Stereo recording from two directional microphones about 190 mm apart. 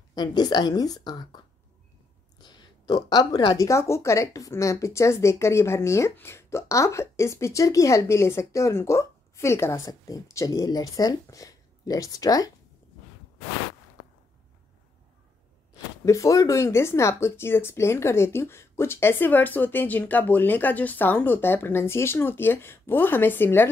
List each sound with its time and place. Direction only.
0.1 s a woman's voice: 20° left (ahead or behind)
2.4 s speech: 20° left (ahead or behind)
16.1 s speech: 15° left (ahead or behind)